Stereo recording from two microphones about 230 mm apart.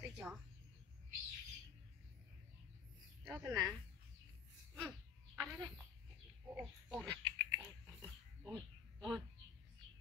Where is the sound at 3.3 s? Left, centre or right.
Centre.